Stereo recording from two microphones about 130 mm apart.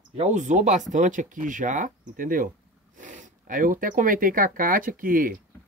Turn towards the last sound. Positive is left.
turn(degrees=-90)